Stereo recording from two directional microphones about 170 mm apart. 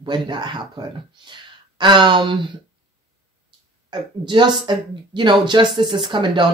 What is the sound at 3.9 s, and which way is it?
A woman's voice, 25° right (ahead or behind).